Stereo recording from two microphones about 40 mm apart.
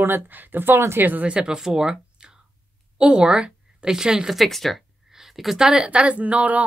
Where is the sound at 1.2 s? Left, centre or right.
Right.